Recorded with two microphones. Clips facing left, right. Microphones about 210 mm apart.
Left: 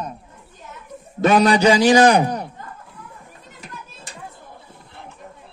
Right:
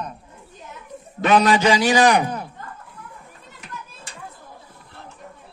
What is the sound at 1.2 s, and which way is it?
A man's voice, 40° left (ahead or behind).